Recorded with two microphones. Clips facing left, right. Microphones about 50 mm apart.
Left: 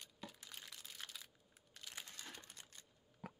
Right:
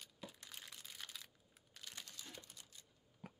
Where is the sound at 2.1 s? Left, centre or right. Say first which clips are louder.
Left 1 dB; left.